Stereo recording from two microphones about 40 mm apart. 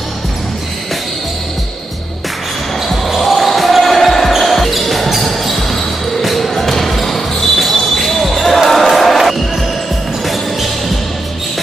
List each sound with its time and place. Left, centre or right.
3.1 s basketball bounce: centre